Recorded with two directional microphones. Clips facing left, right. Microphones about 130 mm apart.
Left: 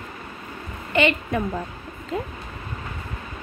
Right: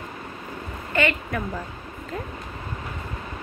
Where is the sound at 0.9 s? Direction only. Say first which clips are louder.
Left 3 dB; 20° left (ahead or behind).